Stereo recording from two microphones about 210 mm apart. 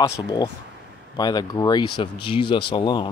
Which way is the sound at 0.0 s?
20° left (ahead or behind).